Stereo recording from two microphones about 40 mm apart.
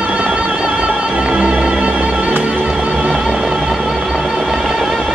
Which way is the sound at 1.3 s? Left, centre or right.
Right.